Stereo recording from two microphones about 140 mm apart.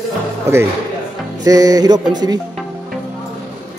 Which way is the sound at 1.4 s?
25° right (ahead or behind).